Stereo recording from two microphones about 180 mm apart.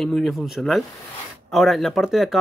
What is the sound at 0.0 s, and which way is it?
Speech, centre (ahead or behind).